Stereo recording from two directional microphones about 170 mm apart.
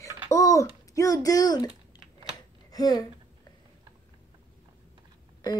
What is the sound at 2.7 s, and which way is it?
Speech, 20° left (ahead or behind).